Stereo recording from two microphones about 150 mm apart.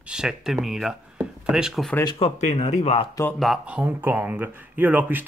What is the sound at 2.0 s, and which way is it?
Speech, 30° left (ahead or behind).